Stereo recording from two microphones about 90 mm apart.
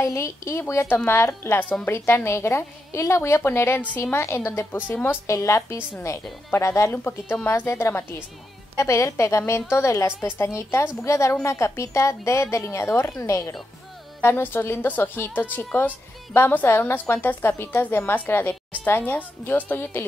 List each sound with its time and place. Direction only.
0.0 s a woman's voice: 35° left (ahead or behind)
14.2 s a woman's voice: 25° left (ahead or behind)